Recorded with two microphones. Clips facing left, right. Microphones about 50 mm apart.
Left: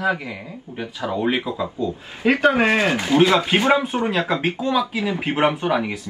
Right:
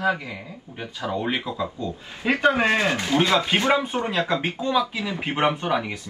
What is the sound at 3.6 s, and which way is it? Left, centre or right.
Speech, left.